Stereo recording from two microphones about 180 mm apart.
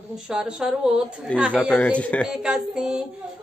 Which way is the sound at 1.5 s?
5° left (ahead or behind).